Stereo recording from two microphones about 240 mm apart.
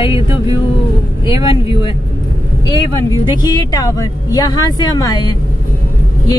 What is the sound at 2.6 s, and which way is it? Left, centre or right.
Speech, centre.